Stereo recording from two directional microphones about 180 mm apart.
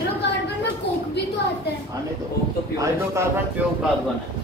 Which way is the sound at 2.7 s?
15° right (ahead or behind).